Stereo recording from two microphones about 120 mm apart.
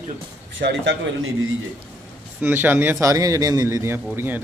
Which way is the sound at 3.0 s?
25° right (ahead or behind).